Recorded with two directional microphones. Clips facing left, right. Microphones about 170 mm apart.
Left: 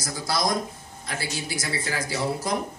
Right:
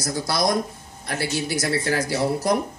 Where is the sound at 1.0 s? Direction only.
65° right (ahead or behind).